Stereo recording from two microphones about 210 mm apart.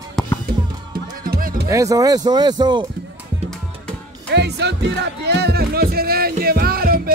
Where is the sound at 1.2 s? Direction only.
40° right (ahead or behind).